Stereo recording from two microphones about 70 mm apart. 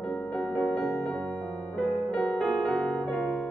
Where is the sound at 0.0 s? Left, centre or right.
Centre.